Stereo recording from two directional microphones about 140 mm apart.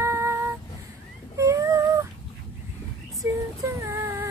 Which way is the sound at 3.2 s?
20° right (ahead or behind).